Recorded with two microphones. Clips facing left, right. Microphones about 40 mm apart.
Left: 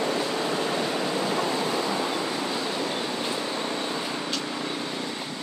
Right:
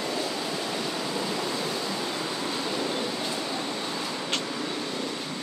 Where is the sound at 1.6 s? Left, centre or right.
Left.